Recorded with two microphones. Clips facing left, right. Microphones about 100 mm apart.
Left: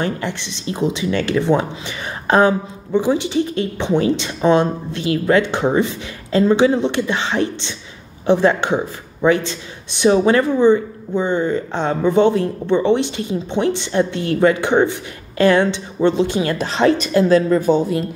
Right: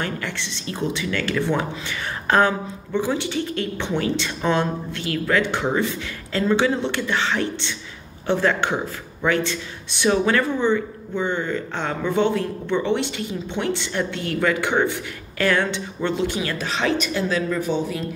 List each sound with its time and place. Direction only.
0.0 s speech: 20° left (ahead or behind); by 17.8 s 40° left (ahead or behind)